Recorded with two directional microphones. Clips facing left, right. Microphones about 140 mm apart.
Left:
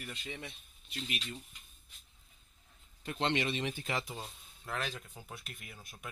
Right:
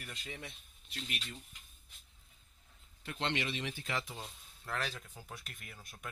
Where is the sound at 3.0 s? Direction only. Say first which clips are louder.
Left 4 dB; 25° left (ahead or behind).